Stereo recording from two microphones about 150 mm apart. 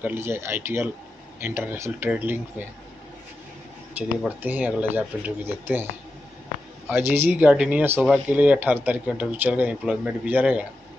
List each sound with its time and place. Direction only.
0.0 s speech: 15° right (ahead or behind)
4.4 s speech: 10° right (ahead or behind)
6.9 s speech: 15° right (ahead or behind)